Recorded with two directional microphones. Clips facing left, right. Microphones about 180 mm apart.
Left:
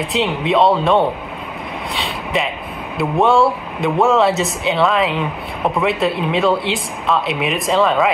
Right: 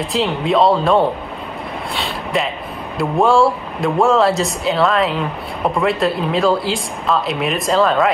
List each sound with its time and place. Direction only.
0.0 s speech: centre (ahead or behind)
2.0 s vehicle: centre (ahead or behind)
3.0 s speech: centre (ahead or behind)